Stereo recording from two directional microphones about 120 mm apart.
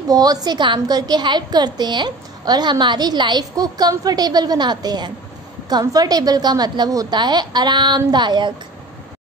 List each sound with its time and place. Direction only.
0.1 s a woman's voice: 35° right (ahead or behind)